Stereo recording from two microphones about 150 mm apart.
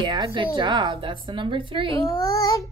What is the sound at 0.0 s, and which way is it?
A woman's voice, 35° right (ahead or behind).